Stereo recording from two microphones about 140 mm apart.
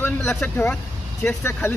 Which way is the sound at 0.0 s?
15° left (ahead or behind).